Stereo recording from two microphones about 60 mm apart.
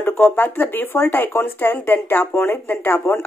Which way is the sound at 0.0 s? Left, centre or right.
Left.